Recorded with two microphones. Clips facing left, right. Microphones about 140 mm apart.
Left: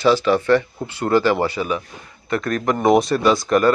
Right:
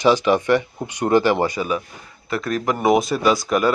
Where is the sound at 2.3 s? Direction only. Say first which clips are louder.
Left 2 dB; 5° right (ahead or behind).